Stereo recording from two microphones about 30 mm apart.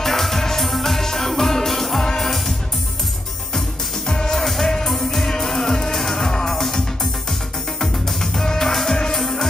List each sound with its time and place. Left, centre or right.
0.0 s music: centre
4.3 s music: centre